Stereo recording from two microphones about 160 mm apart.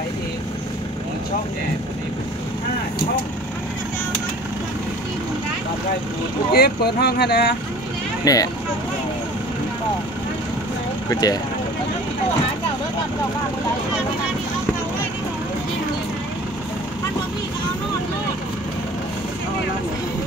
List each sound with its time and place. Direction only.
6.5 s speech: 80° left
8.3 s speech: 20° left (ahead or behind)
11.1 s speech: 25° left (ahead or behind)